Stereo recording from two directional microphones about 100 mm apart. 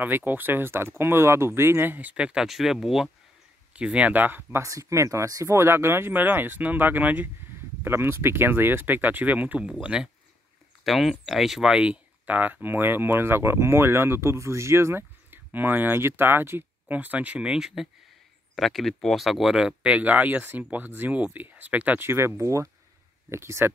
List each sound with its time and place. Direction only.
0.0 s speech: 20° right (ahead or behind)